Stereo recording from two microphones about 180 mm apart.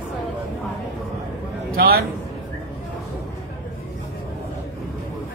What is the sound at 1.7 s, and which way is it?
Speech, 55° right (ahead or behind).